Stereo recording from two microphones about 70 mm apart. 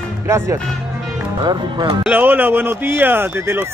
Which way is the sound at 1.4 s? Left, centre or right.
Right.